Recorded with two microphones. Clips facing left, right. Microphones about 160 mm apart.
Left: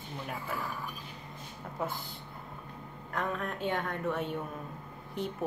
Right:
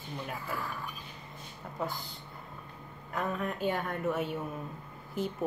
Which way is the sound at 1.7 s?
Centre (ahead or behind).